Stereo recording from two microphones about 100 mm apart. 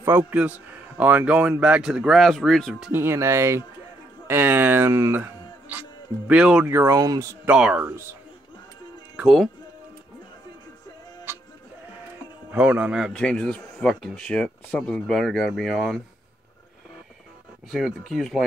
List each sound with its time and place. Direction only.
0.0 s a man's voice: 15° right (ahead or behind); by 2.9 s centre (ahead or behind)
2.9 s speech: 25° right (ahead or behind)
6.7 s speech: 25° right (ahead or behind)
7.0 s speech: 40° right (ahead or behind)
7.4 s a man's voice: 10° right (ahead or behind)
11.3 s music: 25° right (ahead or behind)
12.4 s a man's voice: 15° right (ahead or behind)
13.1 s speech: 10° left (ahead or behind)
17.6 s speech: 5° right (ahead or behind)